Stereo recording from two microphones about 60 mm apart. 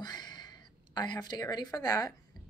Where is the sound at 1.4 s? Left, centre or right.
Left.